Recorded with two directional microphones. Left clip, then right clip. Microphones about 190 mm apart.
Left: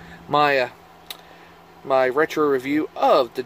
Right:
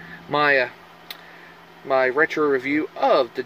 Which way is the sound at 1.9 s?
10° left (ahead or behind).